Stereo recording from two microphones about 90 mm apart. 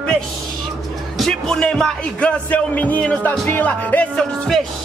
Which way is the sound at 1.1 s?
5° left (ahead or behind).